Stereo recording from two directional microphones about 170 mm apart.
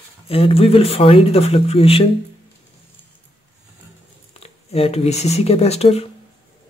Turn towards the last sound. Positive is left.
turn(degrees=35)  # may be behind; listen again after turning